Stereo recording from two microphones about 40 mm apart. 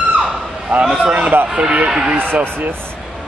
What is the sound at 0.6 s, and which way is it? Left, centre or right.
A man's voice, right.